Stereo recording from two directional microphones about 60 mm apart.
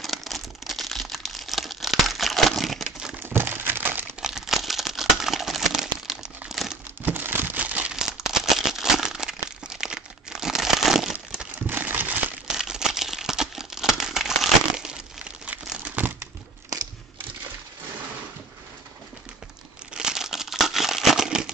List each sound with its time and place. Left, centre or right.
0.0 s crumpling: centre
3.2 s a sound: right
4.2 s a sound: centre
6.5 s crumpling: centre
7.1 s a sound: right
7.9 s crumpling: centre
11.5 s crumpling: right
12.4 s crumpling: centre
15.2 s crumpling: right
15.6 s crumpling: centre
19.9 s crumpling: centre